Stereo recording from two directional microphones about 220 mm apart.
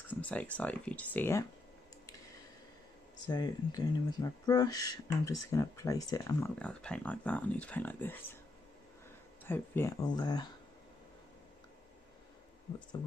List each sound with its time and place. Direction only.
0.1 s speech: 5° left (ahead or behind)
3.3 s speech: 20° left (ahead or behind)
9.4 s speech: 10° left (ahead or behind)